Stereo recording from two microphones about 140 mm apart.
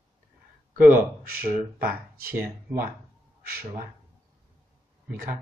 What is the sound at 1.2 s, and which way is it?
Speech, 90° right.